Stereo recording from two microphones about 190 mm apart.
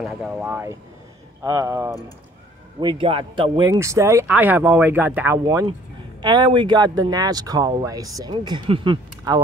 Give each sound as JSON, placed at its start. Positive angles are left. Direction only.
{"t": 0.0, "sound": "speech", "side_deg": -5}